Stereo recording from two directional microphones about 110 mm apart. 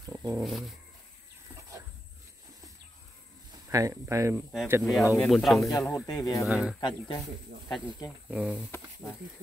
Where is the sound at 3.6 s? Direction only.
30° right (ahead or behind).